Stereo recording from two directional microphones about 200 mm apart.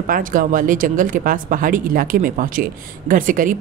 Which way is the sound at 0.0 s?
45° right (ahead or behind).